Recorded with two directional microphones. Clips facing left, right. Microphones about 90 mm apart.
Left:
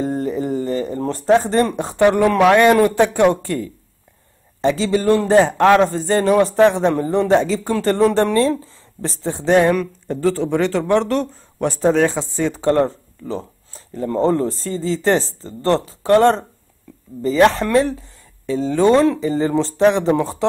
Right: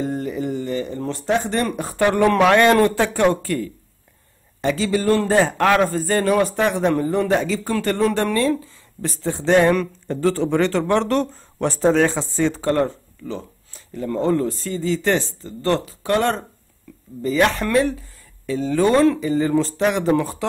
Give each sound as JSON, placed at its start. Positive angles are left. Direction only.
{"t": 0.0, "sound": "speech", "side_deg": 35}
{"t": 2.2, "sound": "a man's voice", "side_deg": 10}
{"t": 12.5, "sound": "a man's voice", "side_deg": 25}